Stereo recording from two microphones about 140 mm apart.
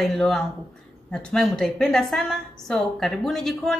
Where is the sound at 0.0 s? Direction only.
5° left (ahead or behind).